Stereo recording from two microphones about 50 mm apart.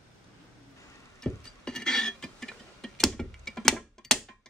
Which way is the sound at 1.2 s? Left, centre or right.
Centre.